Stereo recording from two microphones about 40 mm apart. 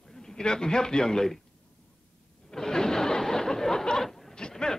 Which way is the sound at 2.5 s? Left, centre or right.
Centre.